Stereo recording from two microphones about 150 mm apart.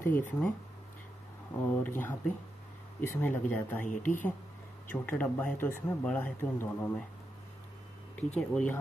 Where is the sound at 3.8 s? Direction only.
60° left (ahead or behind).